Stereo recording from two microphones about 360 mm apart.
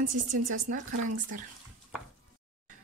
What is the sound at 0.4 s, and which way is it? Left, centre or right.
Speech, right.